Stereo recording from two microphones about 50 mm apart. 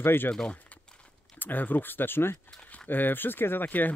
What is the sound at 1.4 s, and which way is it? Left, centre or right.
Speech, left.